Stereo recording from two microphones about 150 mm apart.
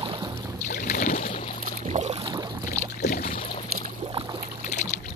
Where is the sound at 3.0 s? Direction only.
65° left (ahead or behind).